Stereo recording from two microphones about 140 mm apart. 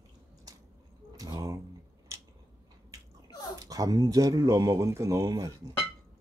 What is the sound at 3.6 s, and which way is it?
Speech, 25° right (ahead or behind).